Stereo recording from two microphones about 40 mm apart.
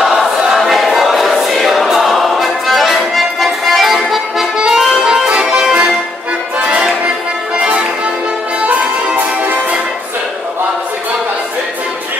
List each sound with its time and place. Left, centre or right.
0.0 s choir: centre
1.9 s music: centre
5.0 s accordion: centre
6.6 s music: right